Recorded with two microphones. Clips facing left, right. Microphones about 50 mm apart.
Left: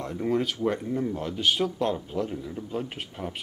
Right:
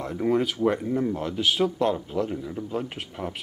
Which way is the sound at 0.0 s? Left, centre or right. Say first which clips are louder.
Right 3 dB; centre.